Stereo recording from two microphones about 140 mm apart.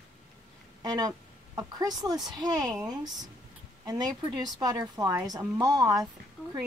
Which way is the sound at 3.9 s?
30° right (ahead or behind).